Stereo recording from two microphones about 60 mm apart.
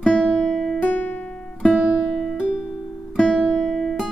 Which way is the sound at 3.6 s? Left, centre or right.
Centre.